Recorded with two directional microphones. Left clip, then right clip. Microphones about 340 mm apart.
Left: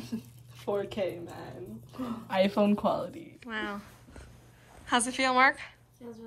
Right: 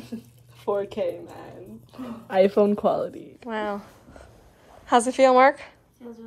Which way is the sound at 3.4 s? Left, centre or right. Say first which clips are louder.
Right 7 dB; right.